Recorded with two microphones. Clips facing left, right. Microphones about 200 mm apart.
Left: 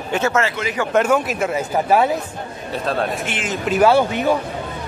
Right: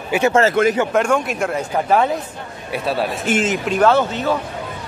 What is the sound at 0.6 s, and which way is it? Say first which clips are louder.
Speech: right 10 dB; 55° right (ahead or behind).